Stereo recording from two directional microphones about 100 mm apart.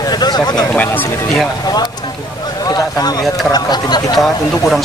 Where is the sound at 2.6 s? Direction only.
40° left (ahead or behind).